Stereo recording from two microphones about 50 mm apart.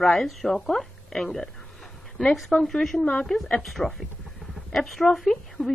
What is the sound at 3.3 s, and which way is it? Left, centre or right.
A woman's voice, centre.